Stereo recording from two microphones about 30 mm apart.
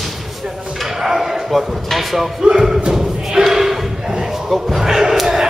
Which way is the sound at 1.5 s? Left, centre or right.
Centre.